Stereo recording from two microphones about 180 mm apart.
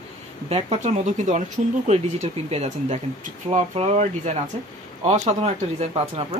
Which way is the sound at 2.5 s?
35° right (ahead or behind).